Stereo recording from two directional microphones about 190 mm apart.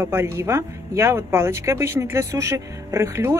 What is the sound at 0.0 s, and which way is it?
Speech, 15° right (ahead or behind).